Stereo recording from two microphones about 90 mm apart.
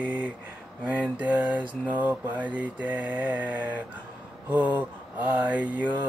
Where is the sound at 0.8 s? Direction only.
15° right (ahead or behind).